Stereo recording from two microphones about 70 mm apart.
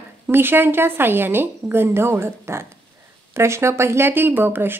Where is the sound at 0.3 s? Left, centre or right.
Right.